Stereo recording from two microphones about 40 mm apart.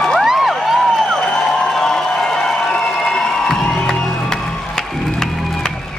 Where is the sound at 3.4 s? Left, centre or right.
Centre.